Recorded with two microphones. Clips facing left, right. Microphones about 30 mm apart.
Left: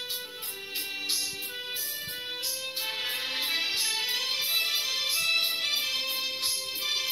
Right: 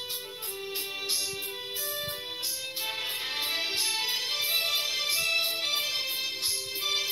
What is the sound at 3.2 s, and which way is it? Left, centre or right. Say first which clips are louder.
Music: left 1 dB; left.